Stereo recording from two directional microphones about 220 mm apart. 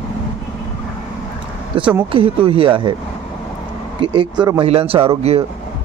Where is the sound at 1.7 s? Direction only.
25° right (ahead or behind).